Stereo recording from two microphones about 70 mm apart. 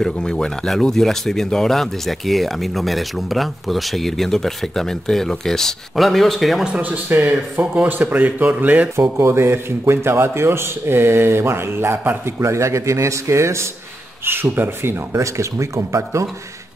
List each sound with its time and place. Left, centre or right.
0.0 s speech: centre
6.6 s speech: right
9.2 s a man's voice: right
12.4 s a man's voice: right
15.1 s a man's voice: right